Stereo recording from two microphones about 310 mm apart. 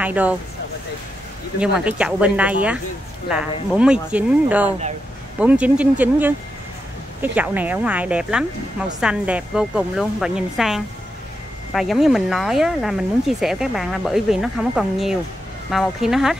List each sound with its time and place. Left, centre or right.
0.0 s speech: centre
1.6 s speech: centre
4.6 s speech: right
5.4 s speech: centre